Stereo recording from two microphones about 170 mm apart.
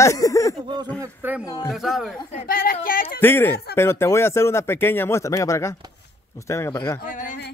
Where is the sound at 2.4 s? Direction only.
60° left (ahead or behind).